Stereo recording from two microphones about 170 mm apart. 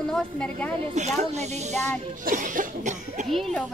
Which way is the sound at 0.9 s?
40° right (ahead or behind).